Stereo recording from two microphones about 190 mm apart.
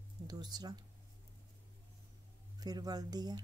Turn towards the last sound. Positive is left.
turn(degrees=-20)  # may be behind; listen again after turning